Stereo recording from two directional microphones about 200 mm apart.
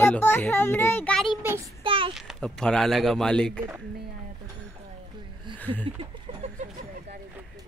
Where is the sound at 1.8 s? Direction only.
25° right (ahead or behind).